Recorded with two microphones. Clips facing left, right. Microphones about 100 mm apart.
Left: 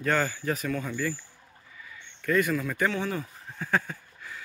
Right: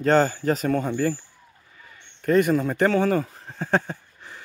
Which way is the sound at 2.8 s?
45° right (ahead or behind).